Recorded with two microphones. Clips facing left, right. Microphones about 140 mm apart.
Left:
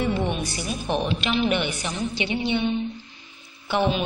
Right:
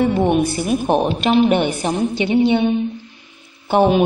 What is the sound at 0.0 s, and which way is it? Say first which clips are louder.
A woman's voice: right 9 dB; 55° right (ahead or behind).